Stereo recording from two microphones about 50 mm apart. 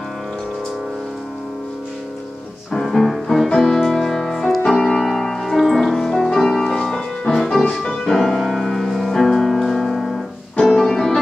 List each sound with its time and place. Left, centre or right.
2.8 s music: centre
8.1 s music: centre